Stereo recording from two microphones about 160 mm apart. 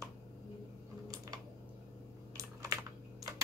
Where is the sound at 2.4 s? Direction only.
20° right (ahead or behind).